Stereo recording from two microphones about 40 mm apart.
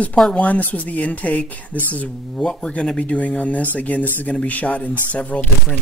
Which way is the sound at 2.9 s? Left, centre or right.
Left.